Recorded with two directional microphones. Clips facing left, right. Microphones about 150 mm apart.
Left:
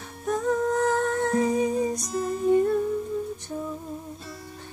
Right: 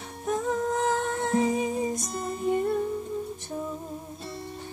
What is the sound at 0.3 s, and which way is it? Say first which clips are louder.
Humming: left 3 dB; 20° right (ahead or behind).